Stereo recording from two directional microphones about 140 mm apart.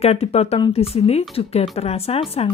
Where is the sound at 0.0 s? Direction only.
45° left (ahead or behind).